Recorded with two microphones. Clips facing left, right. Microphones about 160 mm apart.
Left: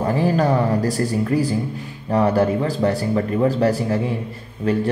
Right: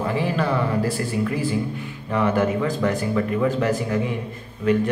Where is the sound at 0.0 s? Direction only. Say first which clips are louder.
Left 4 dB; 40° left (ahead or behind).